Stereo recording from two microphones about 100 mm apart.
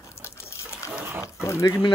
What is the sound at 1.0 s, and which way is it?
Speech, 20° right (ahead or behind).